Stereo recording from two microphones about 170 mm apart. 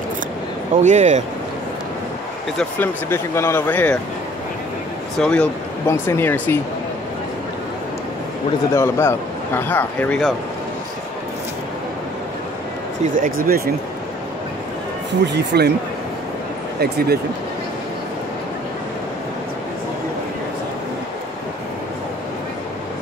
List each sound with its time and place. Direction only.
0.8 s speech: 45° right (ahead or behind)
2.5 s speech: 10° left (ahead or behind)
5.2 s a man's voice: 5° left (ahead or behind)
8.7 s speech: 15° left (ahead or behind)
13.1 s speech: 55° right (ahead or behind)
15.3 s speech: 75° right (ahead or behind)
16.8 s speech: 65° right (ahead or behind)